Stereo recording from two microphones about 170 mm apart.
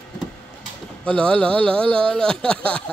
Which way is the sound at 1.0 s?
5° left (ahead or behind).